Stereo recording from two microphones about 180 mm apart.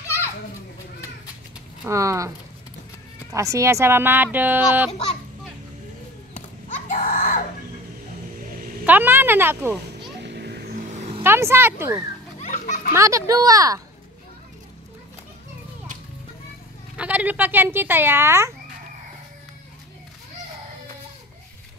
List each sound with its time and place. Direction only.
1.9 s speech: 15° right (ahead or behind)
6.9 s a sound: 45° left (ahead or behind)
8.8 s a child's voice: 10° right (ahead or behind)
10.2 s vehicle: 65° right (ahead or behind); by 11.2 s 35° right (ahead or behind)
11.2 s speech: 15° right (ahead or behind)
12.4 s children playing: 40° left (ahead or behind)
12.9 s speech: 15° right (ahead or behind)
16.9 s speech: 5° right (ahead or behind)